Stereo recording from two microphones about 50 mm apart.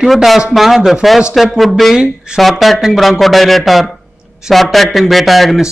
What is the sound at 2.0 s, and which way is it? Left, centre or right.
Speech, centre.